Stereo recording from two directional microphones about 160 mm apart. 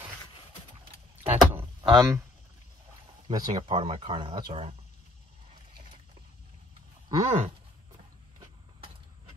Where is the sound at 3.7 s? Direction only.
35° right (ahead or behind).